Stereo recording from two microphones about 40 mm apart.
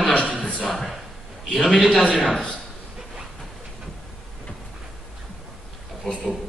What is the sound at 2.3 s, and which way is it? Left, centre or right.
Speech, centre.